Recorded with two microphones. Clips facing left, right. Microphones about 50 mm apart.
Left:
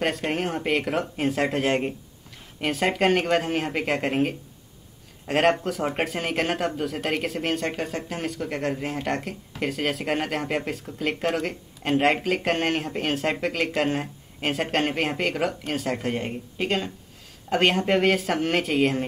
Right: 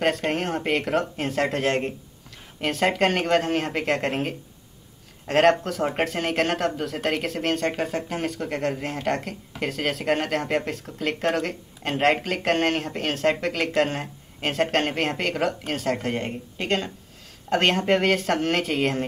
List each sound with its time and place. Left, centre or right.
0.0 s speech: centre